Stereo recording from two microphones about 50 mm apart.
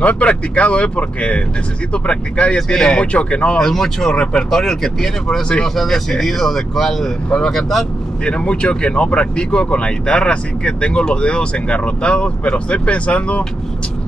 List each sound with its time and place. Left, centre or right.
0.0 s speech: left
3.5 s speech: centre
4.2 s speech: centre
4.5 s speech: centre
8.3 s speech: left